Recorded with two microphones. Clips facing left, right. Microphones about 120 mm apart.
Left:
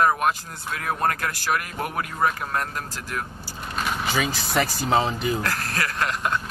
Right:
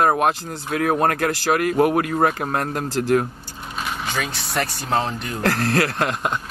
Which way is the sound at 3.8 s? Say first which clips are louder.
Left 1 dB; centre (ahead or behind).